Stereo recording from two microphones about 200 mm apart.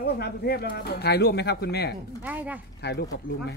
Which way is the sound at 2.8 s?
55° left (ahead or behind).